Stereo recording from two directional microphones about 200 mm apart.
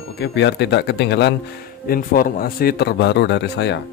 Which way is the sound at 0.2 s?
60° left (ahead or behind).